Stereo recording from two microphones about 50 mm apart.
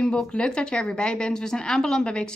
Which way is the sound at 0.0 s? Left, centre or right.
Centre.